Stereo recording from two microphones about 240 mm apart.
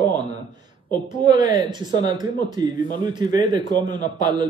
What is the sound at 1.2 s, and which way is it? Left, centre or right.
Speech, centre.